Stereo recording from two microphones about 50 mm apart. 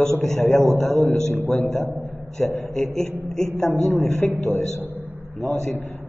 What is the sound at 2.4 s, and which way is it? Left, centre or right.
Speech, centre.